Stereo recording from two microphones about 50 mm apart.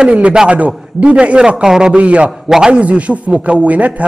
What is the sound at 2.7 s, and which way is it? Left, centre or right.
A man's voice, right.